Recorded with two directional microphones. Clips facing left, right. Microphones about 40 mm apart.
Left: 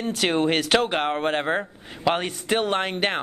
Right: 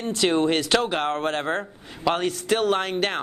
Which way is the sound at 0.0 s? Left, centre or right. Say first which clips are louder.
Right 1 dB; centre.